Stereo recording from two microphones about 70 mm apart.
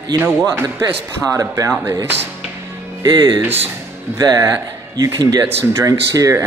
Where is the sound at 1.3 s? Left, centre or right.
Right.